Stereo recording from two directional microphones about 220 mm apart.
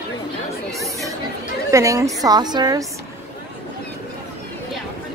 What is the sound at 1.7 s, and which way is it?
A woman's voice, 15° right (ahead or behind).